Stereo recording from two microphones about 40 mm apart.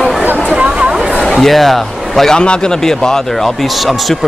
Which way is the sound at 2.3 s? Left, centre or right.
Left.